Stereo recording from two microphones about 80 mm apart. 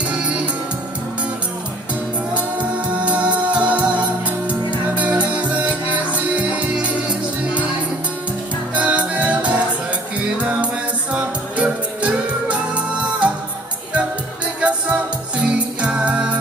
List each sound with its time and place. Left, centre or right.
0.0 s music: centre
3.1 s music: centre
4.9 s music: centre
8.7 s music: centre
14.6 s music: centre